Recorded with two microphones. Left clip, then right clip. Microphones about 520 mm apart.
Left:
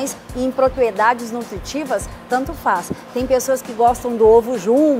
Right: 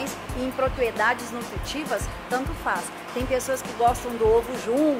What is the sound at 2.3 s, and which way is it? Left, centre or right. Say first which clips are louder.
Speech: left 8 dB; left.